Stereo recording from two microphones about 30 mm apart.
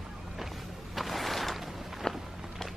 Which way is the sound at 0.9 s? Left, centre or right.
Centre.